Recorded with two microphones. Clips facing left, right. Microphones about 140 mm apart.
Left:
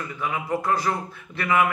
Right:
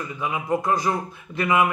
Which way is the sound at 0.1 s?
20° right (ahead or behind).